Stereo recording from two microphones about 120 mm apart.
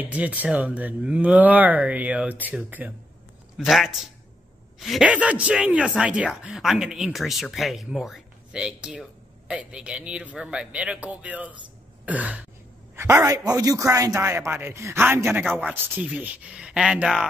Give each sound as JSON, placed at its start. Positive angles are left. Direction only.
{"t": 0.0, "sound": "speech", "side_deg": -10}
{"t": 3.5, "sound": "a woman's voice", "side_deg": 0}
{"t": 5.1, "sound": "a man's voice", "side_deg": -10}